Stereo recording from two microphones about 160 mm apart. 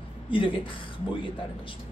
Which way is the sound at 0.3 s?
30° left (ahead or behind).